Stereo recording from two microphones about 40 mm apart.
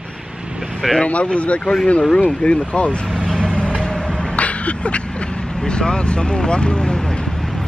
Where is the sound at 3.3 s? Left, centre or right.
Left.